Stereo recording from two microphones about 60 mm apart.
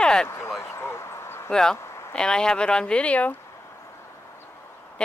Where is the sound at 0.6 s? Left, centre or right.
Left.